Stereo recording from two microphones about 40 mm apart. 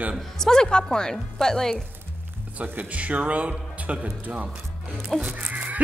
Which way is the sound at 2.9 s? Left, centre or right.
Right.